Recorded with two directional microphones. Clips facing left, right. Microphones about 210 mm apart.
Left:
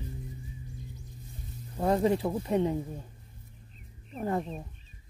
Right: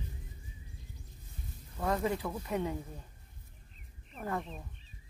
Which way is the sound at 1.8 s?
30° left (ahead or behind).